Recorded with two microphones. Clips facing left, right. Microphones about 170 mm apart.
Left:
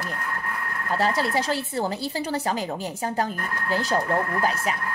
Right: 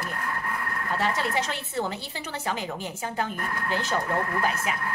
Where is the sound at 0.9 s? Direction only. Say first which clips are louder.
Left 4 dB; 35° left (ahead or behind).